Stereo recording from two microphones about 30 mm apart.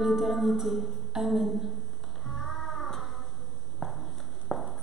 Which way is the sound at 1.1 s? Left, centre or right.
Centre.